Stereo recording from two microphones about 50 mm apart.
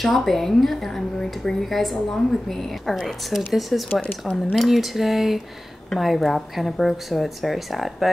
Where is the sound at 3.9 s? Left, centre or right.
Left.